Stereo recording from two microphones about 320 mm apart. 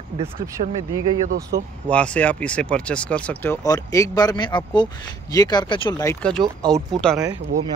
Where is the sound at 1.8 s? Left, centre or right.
Centre.